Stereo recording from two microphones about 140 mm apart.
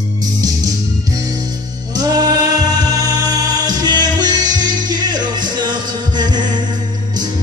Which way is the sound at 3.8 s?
30° right (ahead or behind).